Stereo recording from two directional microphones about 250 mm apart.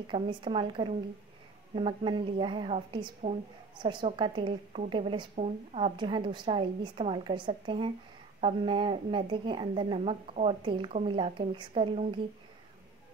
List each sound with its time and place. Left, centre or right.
0.0 s a woman's voice: centre